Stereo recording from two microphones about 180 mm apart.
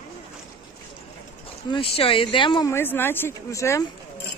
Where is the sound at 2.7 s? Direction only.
10° left (ahead or behind).